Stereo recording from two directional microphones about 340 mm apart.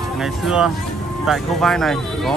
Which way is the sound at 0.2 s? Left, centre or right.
Centre.